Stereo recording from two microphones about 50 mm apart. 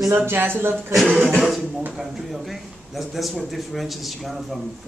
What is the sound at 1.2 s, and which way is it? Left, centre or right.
Speech, centre.